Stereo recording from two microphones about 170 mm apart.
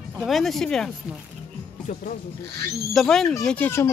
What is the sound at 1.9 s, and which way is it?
Speech, 50° left (ahead or behind).